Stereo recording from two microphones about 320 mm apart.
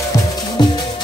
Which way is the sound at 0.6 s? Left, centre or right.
Centre.